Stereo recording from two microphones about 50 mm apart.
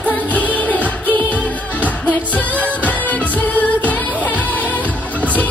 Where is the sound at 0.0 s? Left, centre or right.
Left.